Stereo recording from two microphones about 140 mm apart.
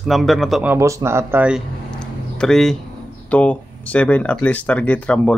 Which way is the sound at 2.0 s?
5° left (ahead or behind).